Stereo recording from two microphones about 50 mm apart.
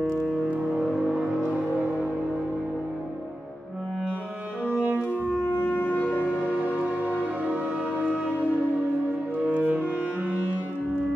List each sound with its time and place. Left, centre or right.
0.9 s vehicle: centre
4.6 s music: right
7.4 s music: right